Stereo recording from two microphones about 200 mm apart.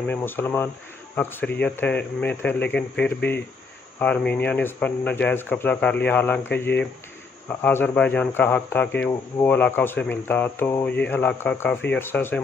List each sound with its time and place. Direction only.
0.1 s speech: 10° left (ahead or behind)